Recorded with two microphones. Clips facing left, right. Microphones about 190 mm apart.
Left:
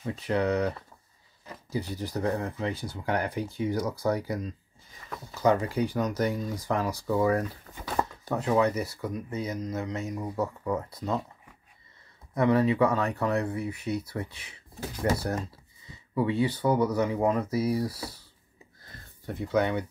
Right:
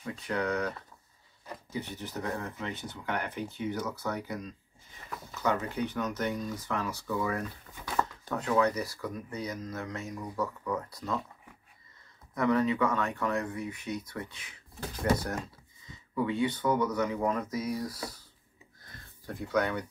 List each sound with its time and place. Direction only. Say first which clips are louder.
0.0 s speech: left 5 dB; 30° left (ahead or behind)
5.4 s speech: left 6 dB; 35° left (ahead or behind)
12.4 s speech: left 4 dB; 30° left (ahead or behind)
15.9 s a sound: left 3 dB; 30° left (ahead or behind)
16.6 s speech: left 4 dB; 30° left (ahead or behind)
18.9 s a sound: left 4 dB; 25° left (ahead or behind)